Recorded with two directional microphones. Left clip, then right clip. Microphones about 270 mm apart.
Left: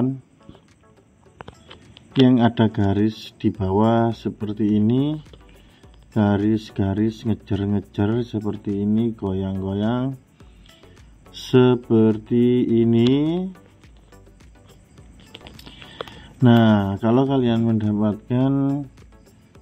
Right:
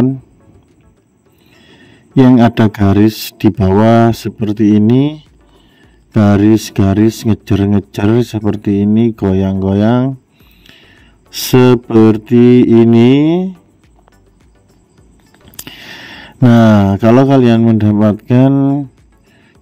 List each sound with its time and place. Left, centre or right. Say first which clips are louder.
2.2 s speech: right 9 dB; right
11.3 s speech: right 8 dB; right
15.6 s speech: right 7 dB; right